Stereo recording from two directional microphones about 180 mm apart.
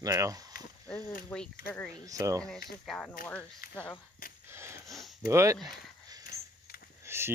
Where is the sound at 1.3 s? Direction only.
5° left (ahead or behind).